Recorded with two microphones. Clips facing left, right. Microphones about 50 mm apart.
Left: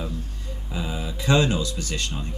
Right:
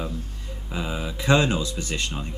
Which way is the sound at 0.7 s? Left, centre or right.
Right.